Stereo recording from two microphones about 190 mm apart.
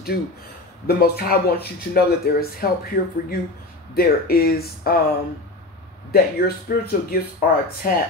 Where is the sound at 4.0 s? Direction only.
55° left (ahead or behind).